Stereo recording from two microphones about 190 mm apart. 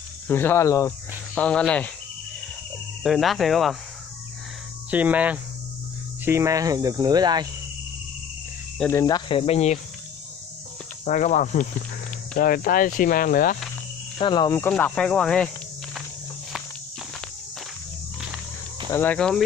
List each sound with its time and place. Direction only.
0.3 s speech: 10° left (ahead or behind)
1.3 s speech: 5° left (ahead or behind)
3.0 s speech: centre (ahead or behind)
4.9 s cricket: 10° right (ahead or behind)
8.7 s cricket: 10° left (ahead or behind)
9.0 s speech: 25° left (ahead or behind)
11.1 s speech: 40° left (ahead or behind)
14.1 s speech: 25° left (ahead or behind)
14.6 s speech: 10° left (ahead or behind)
18.9 s speech: 10° left (ahead or behind)